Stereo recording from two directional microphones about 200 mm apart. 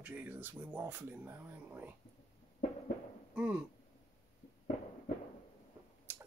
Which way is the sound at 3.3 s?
5° right (ahead or behind).